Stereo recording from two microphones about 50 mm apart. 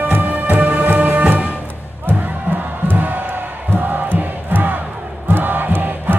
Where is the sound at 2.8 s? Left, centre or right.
Right.